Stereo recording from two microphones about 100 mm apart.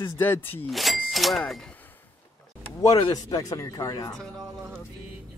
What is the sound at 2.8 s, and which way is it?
Speech, 45° left (ahead or behind).